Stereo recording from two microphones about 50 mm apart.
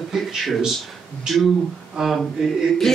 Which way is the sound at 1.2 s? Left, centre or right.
Centre.